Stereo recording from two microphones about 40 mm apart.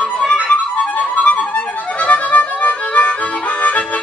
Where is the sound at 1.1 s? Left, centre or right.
Left.